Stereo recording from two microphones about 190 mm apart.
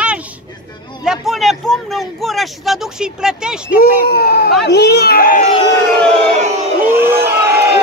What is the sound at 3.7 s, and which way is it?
A child's voice, 50° left (ahead or behind).